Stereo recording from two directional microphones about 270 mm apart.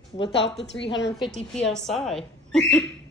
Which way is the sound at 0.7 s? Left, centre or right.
Left.